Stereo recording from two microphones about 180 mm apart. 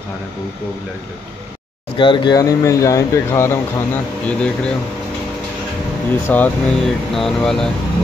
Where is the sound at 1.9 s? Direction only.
25° left (ahead or behind); by 4.7 s 5° left (ahead or behind).